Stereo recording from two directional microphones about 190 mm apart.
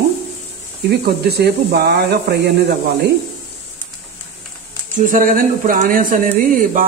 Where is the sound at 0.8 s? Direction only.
55° right (ahead or behind).